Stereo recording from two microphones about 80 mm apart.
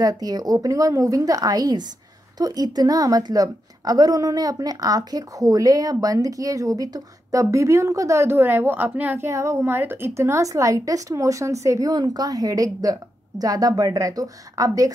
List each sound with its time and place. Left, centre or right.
0.0 s a woman's voice: right
9.3 s a woman's voice: right
11.9 s a woman's voice: right